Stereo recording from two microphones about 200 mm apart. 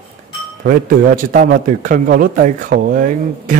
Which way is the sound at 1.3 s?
45° right (ahead or behind).